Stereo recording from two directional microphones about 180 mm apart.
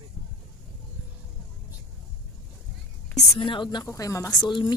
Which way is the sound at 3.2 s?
30° left (ahead or behind).